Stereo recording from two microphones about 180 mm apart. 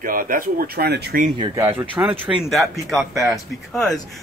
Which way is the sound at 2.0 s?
5° right (ahead or behind).